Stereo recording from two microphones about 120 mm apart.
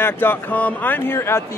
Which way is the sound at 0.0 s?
20° left (ahead or behind).